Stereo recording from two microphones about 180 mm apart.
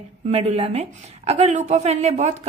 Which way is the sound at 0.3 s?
40° right (ahead or behind).